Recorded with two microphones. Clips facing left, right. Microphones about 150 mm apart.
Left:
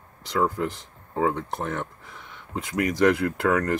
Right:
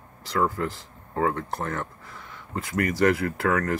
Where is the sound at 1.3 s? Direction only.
20° left (ahead or behind).